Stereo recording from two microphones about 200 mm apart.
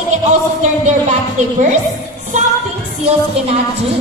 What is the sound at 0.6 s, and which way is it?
Speech, 35° right (ahead or behind).